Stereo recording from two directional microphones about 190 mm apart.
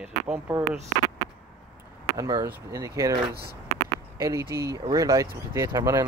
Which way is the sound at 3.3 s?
55° right (ahead or behind).